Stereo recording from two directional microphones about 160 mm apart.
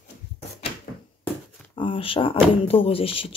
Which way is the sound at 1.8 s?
35° left (ahead or behind).